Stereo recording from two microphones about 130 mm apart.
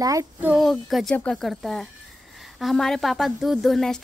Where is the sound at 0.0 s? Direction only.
25° right (ahead or behind).